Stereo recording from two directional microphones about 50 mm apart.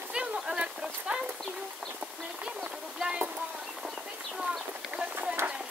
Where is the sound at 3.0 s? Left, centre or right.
Right.